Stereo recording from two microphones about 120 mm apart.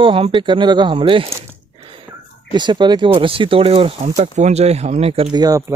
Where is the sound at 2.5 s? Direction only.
40° right (ahead or behind).